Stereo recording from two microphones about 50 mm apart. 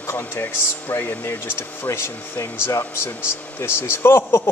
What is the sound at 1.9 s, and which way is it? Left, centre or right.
A man's voice, left.